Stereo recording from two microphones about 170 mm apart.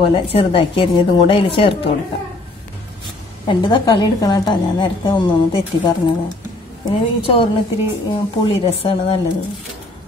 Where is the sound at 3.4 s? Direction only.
30° left (ahead or behind).